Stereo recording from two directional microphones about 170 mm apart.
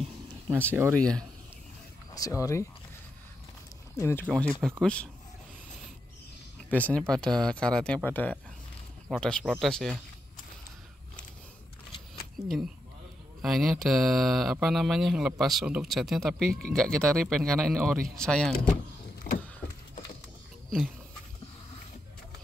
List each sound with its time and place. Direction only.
0.5 s speech: 15° right (ahead or behind)
0.9 s speech: 5° left (ahead or behind)
2.1 s speech: 20° left (ahead or behind)
4.0 s speech: 10° left (ahead or behind)
6.7 s speech: 10° left (ahead or behind)
13.4 s speech: centre (ahead or behind)
19.3 s vehicle: 10° left (ahead or behind)